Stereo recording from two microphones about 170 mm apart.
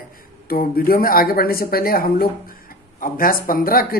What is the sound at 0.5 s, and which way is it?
Speech, 60° left (ahead or behind).